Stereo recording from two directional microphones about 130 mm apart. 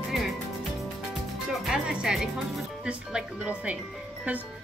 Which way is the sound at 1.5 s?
5° right (ahead or behind).